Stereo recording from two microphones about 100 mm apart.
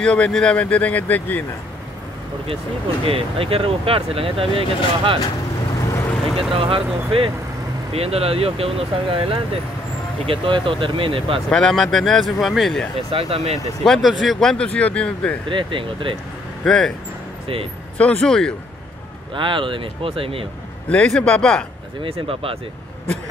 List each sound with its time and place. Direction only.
0.0 s speech: 10° left (ahead or behind)
3.1 s speech: 70° right (ahead or behind)
6.2 s vehicle: centre (ahead or behind)
6.5 s speech: 70° right (ahead or behind)
7.9 s speech: 85° right; by 11.4 s 65° right (ahead or behind)
11.4 s speech: 5° left (ahead or behind)
13.1 s speech: 80° right
13.8 s speech: 5° left (ahead or behind)
15.4 s speech: 60° right (ahead or behind)
16.6 s speech: 5° left (ahead or behind)
17.9 s speech: 10° left (ahead or behind)
19.3 s speech: 55° right (ahead or behind)
20.9 s speech: 10° left (ahead or behind)
22.0 s speech: 65° right (ahead or behind)